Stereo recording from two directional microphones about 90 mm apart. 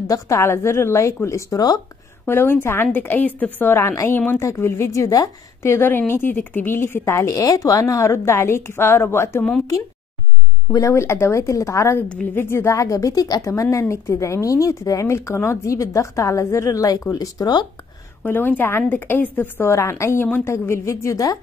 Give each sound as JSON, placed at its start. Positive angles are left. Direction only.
{"t": 0.0, "sound": "a woman's voice", "side_deg": 35}
{"t": 5.7, "sound": "a woman's voice", "side_deg": 25}
{"t": 10.7, "sound": "speech", "side_deg": 35}
{"t": 12.0, "sound": "a woman's voice", "side_deg": 15}
{"t": 12.4, "sound": "speech", "side_deg": 30}
{"t": 18.2, "sound": "a woman's voice", "side_deg": 20}